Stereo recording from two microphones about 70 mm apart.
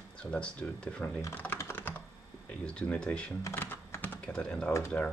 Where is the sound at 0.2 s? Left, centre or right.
Centre.